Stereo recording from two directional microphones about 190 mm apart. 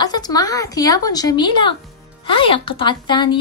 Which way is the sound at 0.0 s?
20° left (ahead or behind).